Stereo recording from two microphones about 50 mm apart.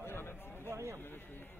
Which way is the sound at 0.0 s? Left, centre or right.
Left.